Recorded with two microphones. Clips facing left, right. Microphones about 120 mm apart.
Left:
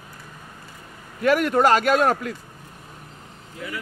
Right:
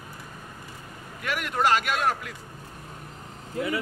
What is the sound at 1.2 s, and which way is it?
A man's voice, 40° left (ahead or behind).